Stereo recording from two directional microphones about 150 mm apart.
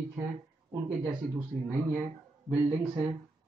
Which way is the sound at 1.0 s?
25° right (ahead or behind).